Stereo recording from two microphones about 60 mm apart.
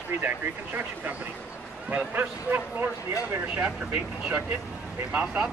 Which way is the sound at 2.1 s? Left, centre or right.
Right.